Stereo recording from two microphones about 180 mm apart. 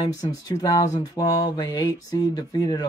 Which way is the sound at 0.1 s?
20° left (ahead or behind).